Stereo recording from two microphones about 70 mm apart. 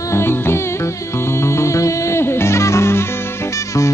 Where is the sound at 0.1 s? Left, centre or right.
Left.